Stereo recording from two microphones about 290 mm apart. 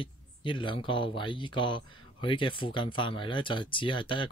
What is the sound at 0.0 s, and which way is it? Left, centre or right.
Speech, centre.